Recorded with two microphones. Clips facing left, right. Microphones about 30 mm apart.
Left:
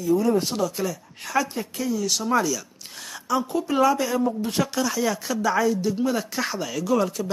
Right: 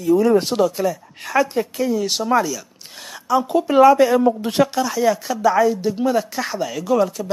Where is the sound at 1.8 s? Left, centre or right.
Right.